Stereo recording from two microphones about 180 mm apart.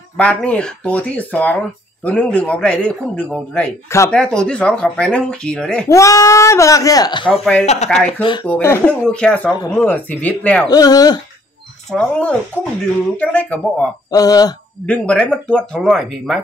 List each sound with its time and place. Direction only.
0.2 s speech: 5° left (ahead or behind)
5.9 s speech: 15° left (ahead or behind)
7.6 s speech: 35° left (ahead or behind)
8.5 s speech: 10° left (ahead or behind)
10.7 s speech: 20° left (ahead or behind)
11.9 s speech: 5° left (ahead or behind)
14.1 s speech: 20° left (ahead or behind)
14.9 s speech: 5° left (ahead or behind)